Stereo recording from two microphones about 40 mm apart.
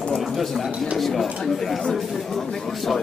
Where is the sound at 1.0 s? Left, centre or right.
Centre.